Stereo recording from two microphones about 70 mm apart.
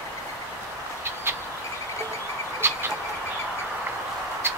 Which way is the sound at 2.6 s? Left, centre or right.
Right.